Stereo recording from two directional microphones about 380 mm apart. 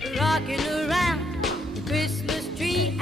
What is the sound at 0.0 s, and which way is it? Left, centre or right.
Music, centre.